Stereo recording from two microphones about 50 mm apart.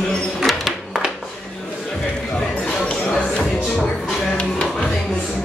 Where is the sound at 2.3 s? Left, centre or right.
Centre.